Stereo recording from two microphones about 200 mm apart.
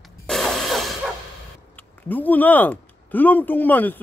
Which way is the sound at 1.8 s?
10° left (ahead or behind).